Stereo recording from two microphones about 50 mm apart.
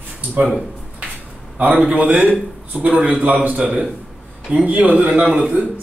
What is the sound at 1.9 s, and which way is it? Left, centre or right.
A man's voice, right.